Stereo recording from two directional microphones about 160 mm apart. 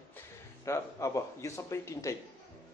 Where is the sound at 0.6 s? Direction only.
20° left (ahead or behind).